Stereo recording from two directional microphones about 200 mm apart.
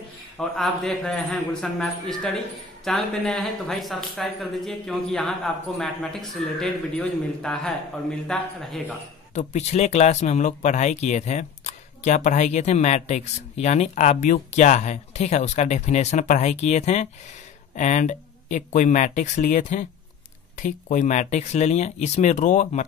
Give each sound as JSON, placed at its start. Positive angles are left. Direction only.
{"t": 0.4, "sound": "a man's voice", "side_deg": 0}
{"t": 9.3, "sound": "speech", "side_deg": 35}